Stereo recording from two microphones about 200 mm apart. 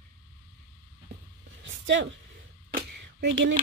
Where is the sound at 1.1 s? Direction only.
55° right (ahead or behind).